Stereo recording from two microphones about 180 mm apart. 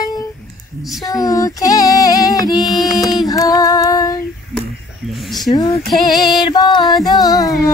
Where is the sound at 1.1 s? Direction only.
20° left (ahead or behind).